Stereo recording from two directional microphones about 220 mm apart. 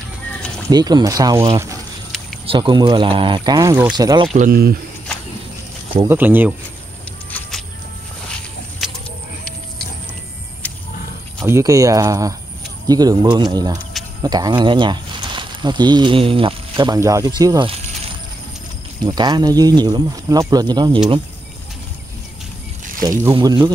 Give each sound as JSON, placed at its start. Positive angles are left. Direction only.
{"t": 0.7, "sound": "speech", "side_deg": -20}
{"t": 4.3, "sound": "speech", "side_deg": -40}
{"t": 6.0, "sound": "speech", "side_deg": -10}
{"t": 7.2, "sound": "a sound", "side_deg": 5}
{"t": 10.6, "sound": "wild animals", "side_deg": 5}
{"t": 11.4, "sound": "speech", "side_deg": -15}
{"t": 19.0, "sound": "speech", "side_deg": -20}
{"t": 23.0, "sound": "speech", "side_deg": -15}